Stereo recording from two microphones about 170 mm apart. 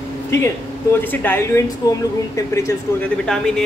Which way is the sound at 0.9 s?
10° left (ahead or behind).